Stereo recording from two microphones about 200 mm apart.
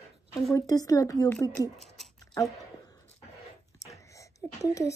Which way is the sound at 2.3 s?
15° left (ahead or behind).